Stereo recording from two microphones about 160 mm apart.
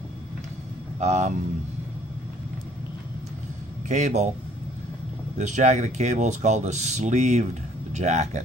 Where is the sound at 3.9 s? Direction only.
45° right (ahead or behind).